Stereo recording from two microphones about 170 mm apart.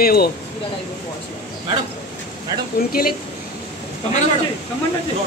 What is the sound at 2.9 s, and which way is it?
Speech, 60° left (ahead or behind).